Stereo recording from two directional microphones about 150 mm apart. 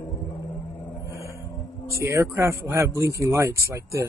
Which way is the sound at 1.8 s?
20° right (ahead or behind).